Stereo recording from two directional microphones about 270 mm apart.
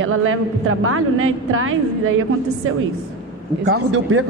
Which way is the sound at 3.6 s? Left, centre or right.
Right.